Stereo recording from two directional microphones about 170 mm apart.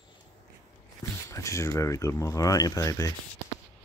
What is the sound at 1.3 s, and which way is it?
Speech, 20° left (ahead or behind).